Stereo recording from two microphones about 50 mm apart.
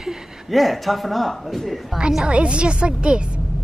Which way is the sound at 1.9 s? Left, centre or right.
Centre.